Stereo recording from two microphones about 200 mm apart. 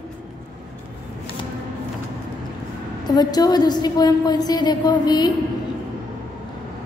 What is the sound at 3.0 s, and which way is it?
Music, 20° left (ahead or behind).